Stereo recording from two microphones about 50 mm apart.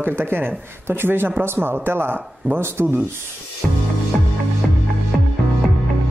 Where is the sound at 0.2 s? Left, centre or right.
Right.